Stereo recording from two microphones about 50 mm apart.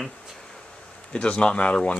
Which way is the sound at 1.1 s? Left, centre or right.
Left.